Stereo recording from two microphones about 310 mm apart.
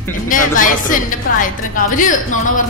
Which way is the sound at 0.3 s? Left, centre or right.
Left.